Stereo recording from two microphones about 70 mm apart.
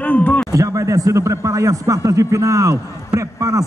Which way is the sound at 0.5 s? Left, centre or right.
Right.